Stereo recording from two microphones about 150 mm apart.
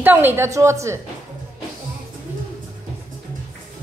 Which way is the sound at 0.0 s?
15° right (ahead or behind).